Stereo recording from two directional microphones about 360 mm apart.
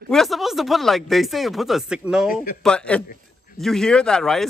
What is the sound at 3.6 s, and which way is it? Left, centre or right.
Speech, centre.